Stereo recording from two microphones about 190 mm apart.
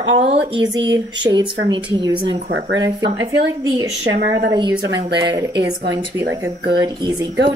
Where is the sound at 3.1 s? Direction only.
30° right (ahead or behind).